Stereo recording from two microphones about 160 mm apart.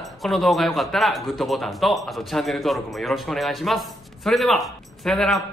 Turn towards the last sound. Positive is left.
turn(degrees=0)  # may be behind; listen again after turning